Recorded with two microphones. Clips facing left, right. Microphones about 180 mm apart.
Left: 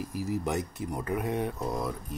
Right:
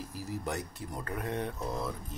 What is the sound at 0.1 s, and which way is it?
Speech, 15° left (ahead or behind).